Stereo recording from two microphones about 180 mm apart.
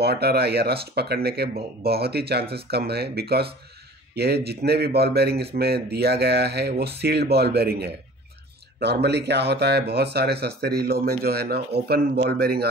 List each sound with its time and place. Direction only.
0.0 s a man's voice: 65° right (ahead or behind)